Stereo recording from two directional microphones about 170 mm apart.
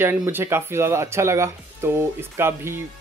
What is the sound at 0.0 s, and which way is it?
Speech, 15° right (ahead or behind).